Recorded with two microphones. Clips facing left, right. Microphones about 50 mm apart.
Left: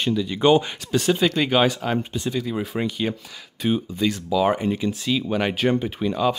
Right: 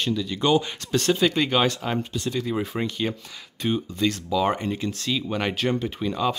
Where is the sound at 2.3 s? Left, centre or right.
Centre.